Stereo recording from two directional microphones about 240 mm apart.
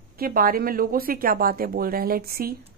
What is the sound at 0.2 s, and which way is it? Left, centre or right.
Speech, right.